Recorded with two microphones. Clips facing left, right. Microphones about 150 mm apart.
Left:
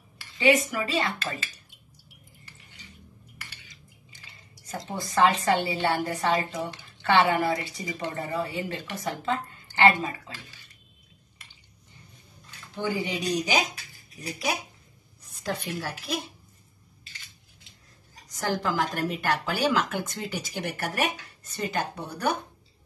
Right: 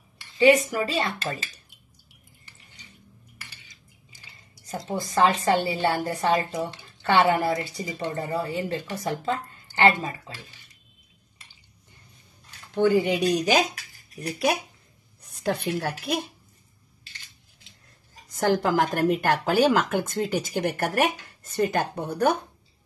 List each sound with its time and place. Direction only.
0.4 s speech: 35° right (ahead or behind)
4.6 s a woman's voice: 35° right (ahead or behind)
12.7 s speech: 55° right (ahead or behind)
15.4 s speech: 60° right (ahead or behind)
18.3 s speech: 55° right (ahead or behind)